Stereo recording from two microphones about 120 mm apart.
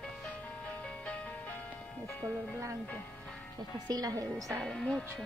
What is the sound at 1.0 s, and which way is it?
Music, 10° left (ahead or behind).